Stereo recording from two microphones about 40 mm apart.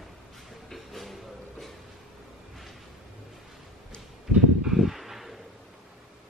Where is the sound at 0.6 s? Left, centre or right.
Centre.